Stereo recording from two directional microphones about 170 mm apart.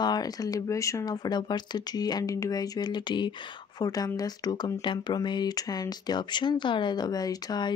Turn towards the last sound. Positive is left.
turn(degrees=25)  # may be behind; listen again after turning